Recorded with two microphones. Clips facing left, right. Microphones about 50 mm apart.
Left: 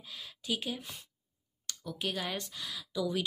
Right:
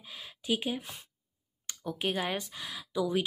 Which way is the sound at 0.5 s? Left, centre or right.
Centre.